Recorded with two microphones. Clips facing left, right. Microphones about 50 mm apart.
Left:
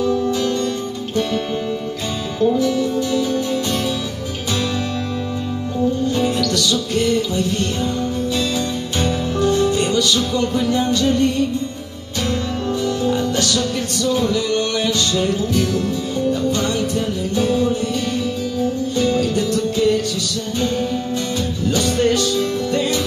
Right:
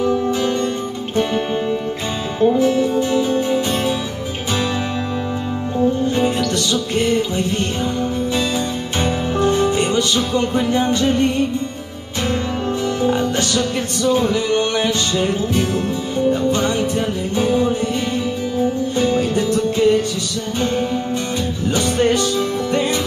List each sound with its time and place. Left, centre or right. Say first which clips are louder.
0.0 s music: right 1 dB; right
2.4 s music: right 2 dB; right
5.8 s music: right 2 dB; right
9.0 s music: right 1 dB; right
12.8 s music: right 2 dB; right
18.9 s music: even; right
21.6 s music: right 1 dB; right